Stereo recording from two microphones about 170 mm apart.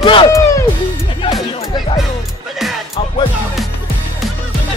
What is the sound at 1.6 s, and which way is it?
Music, 30° left (ahead or behind).